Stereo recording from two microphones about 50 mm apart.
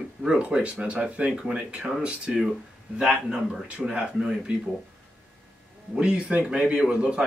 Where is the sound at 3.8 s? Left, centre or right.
Centre.